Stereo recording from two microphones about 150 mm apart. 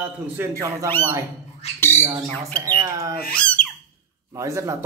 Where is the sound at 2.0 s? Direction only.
20° right (ahead or behind).